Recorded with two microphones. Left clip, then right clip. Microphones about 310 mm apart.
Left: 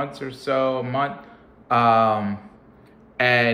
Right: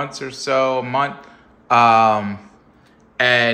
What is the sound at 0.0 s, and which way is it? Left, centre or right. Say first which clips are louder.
Speech: right 3 dB; centre.